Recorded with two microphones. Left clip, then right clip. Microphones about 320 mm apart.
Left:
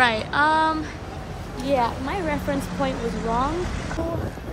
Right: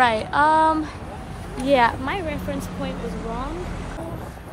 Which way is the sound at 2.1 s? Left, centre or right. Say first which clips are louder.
Left 2 dB; centre.